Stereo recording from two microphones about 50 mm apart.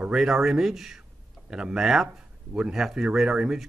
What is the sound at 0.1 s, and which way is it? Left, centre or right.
Speech, centre.